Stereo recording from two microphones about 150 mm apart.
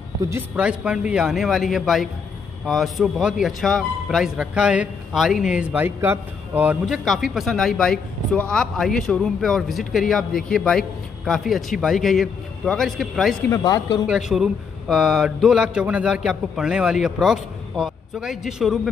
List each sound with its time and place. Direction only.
0.6 s speech: 5° right (ahead or behind)
13.5 s speech: 25° left (ahead or behind)
14.0 s speech: 5° right (ahead or behind)